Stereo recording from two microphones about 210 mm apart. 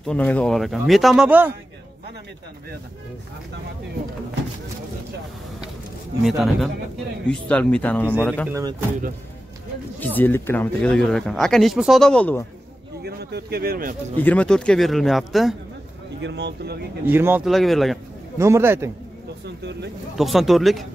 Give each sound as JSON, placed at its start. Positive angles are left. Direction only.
{"t": 0.0, "sound": "speech", "side_deg": 5}
{"t": 6.2, "sound": "speech", "side_deg": 0}
{"t": 8.5, "sound": "speech", "side_deg": -15}
{"t": 9.9, "sound": "speech", "side_deg": 10}
{"t": 13.0, "sound": "speech", "side_deg": -50}
{"t": 14.1, "sound": "speech", "side_deg": 5}
{"t": 16.2, "sound": "speech", "side_deg": -55}
{"t": 17.1, "sound": "speech", "side_deg": -10}
{"t": 17.6, "sound": "speech", "side_deg": 0}
{"t": 18.4, "sound": "speech", "side_deg": -10}
{"t": 19.4, "sound": "speech", "side_deg": -55}
{"t": 20.2, "sound": "speech", "side_deg": 0}